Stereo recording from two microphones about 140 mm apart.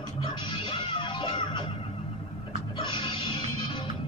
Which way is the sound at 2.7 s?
35° left (ahead or behind).